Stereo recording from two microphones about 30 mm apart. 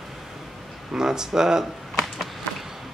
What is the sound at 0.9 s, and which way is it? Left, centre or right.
Speech, right.